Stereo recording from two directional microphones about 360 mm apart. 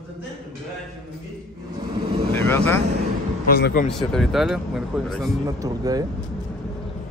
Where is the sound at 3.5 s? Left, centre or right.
Left.